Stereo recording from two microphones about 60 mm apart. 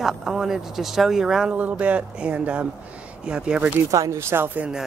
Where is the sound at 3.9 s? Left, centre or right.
Right.